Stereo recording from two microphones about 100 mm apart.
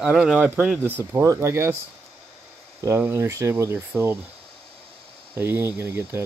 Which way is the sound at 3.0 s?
25° right (ahead or behind).